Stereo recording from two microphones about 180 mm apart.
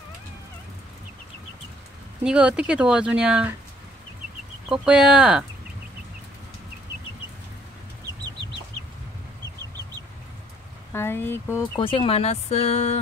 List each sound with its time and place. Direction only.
2.2 s speech: 5° right (ahead or behind)
4.6 s speech: 5° right (ahead or behind)
10.9 s speech: 15° left (ahead or behind)
11.7 s speech: 30° left (ahead or behind)